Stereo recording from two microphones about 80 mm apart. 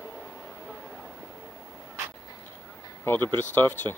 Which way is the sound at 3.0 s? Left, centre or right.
Left.